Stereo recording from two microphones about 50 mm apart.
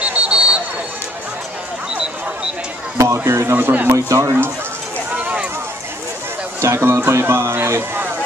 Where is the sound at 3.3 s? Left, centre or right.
Right.